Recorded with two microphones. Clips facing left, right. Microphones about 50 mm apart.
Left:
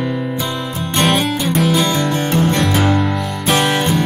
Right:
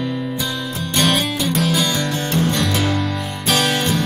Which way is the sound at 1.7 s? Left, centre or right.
Left.